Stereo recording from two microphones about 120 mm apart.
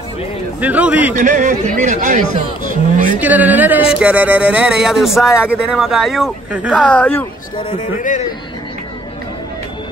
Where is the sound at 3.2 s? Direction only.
15° right (ahead or behind); by 7.3 s 15° left (ahead or behind).